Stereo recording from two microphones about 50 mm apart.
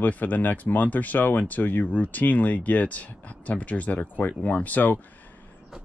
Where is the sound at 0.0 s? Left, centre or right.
Left.